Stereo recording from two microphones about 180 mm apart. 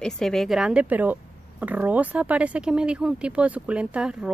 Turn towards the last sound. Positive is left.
turn(degrees=-5)  # may be behind; listen again after turning